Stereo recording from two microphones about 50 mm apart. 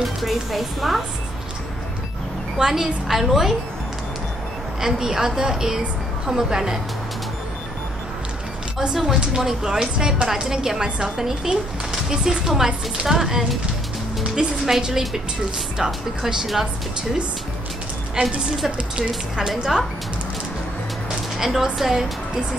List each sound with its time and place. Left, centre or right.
0.2 s a woman's voice: centre
2.5 s speech: centre
4.7 s speech: centre
8.7 s speech: centre
18.2 s a woman's voice: right
19.0 s speech: centre
21.4 s speech: centre